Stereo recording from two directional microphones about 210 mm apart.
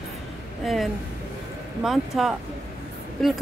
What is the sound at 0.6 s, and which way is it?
Speech, centre (ahead or behind).